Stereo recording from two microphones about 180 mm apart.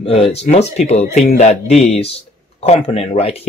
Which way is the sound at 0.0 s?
35° left (ahead or behind).